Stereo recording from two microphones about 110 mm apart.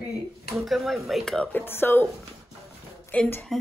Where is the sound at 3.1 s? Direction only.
15° left (ahead or behind).